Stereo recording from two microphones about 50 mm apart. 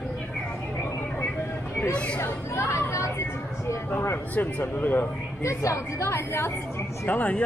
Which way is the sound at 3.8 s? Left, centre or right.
Left.